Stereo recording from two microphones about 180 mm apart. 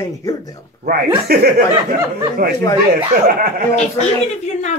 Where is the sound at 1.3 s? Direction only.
55° right (ahead or behind).